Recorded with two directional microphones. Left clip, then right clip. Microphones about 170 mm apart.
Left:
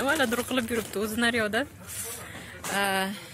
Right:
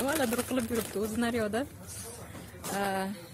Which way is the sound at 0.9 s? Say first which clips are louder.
Left 7 dB; centre (ahead or behind).